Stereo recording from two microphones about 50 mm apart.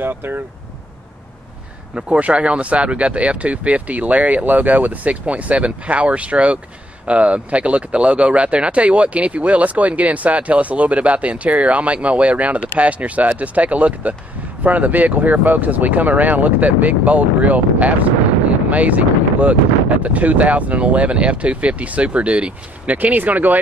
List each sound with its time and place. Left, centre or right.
0.0 s speech: right
2.0 s speech: right